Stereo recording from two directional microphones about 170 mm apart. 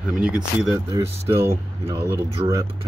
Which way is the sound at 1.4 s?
15° right (ahead or behind).